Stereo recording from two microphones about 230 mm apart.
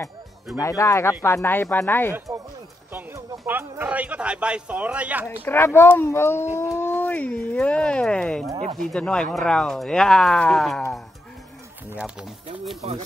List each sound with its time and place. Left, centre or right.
0.6 s speech: centre
2.1 s a sound: centre
5.4 s speech: centre
12.8 s speech: right